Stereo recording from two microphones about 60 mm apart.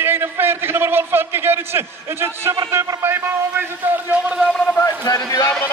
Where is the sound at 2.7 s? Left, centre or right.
Right.